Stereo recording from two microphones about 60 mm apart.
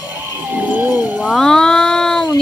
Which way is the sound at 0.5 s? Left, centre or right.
Right.